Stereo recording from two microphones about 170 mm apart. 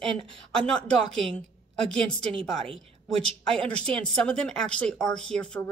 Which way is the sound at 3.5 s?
5° left (ahead or behind).